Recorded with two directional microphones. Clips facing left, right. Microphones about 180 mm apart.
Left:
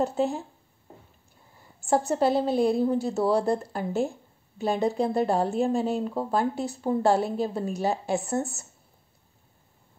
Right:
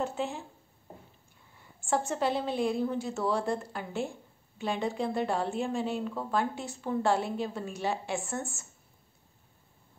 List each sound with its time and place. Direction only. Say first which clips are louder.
0.0 s speech: left 7 dB; 40° left (ahead or behind)
1.9 s speech: left 6 dB; 35° left (ahead or behind)